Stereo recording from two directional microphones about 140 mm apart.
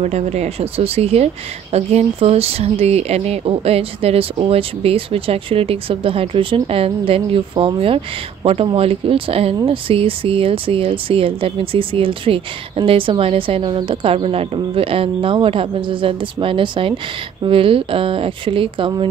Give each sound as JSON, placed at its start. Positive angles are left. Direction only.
{"t": 0.0, "sound": "speech", "side_deg": -50}